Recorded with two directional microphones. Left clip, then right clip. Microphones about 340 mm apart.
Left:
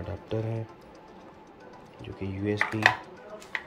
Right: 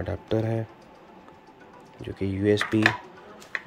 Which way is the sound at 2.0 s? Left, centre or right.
Centre.